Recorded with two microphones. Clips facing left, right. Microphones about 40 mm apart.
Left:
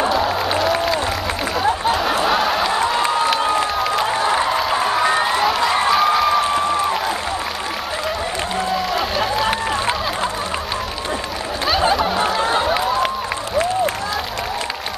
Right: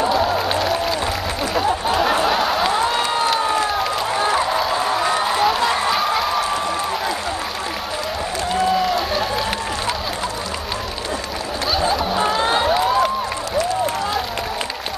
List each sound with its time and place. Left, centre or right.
0.1 s music: centre
1.9 s snicker: centre
5.0 s crowd: left
5.9 s a sound: centre
8.8 s crowd: centre